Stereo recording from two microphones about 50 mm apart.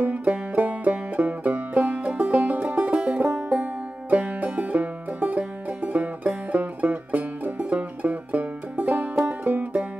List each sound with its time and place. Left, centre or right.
0.0 s banjo: right
0.6 s music: right